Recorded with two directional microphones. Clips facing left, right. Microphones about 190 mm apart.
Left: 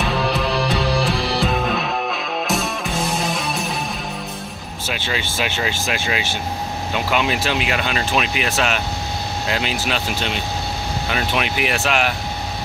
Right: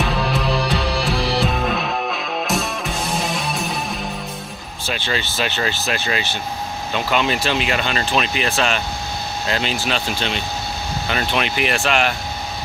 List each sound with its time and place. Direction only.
0.3 s music: centre (ahead or behind)
4.8 s speech: 10° left (ahead or behind)